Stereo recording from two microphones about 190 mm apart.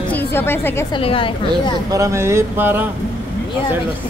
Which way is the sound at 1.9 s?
15° right (ahead or behind).